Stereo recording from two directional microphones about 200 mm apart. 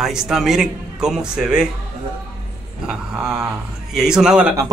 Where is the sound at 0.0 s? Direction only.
5° right (ahead or behind).